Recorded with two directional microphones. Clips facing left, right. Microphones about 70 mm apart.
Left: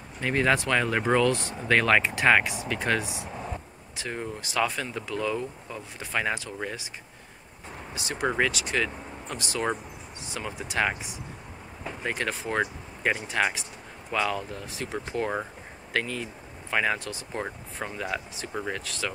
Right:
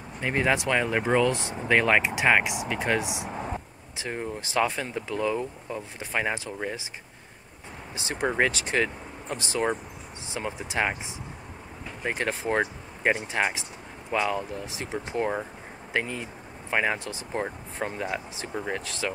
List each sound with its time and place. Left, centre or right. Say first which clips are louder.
0.2 s speech: left 1 dB; centre
7.9 s speech: even; right
12.1 s speech: right 3 dB; right